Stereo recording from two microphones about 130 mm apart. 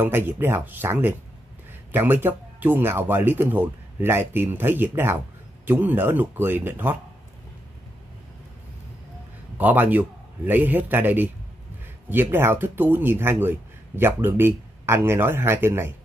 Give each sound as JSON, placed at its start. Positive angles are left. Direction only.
{"t": 0.0, "sound": "speech", "side_deg": -15}
{"t": 9.6, "sound": "speech", "side_deg": -10}